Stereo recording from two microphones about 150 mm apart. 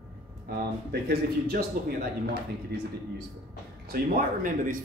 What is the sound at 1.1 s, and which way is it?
Speech, 90° right.